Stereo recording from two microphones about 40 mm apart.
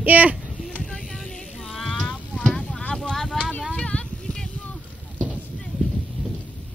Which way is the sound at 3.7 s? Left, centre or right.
Left.